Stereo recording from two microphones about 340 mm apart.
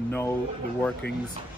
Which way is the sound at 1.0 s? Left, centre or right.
Left.